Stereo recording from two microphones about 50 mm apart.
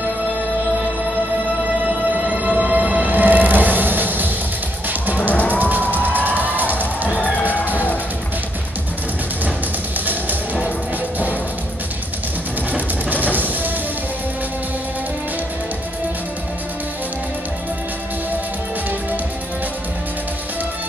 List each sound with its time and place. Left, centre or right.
1.9 s music: right
5.3 s music: left
5.6 s music: right
5.9 s cheering: left
6.2 s music: right
7.2 s music: left
7.6 s music: right
10.0 s music: right
12.7 s music: right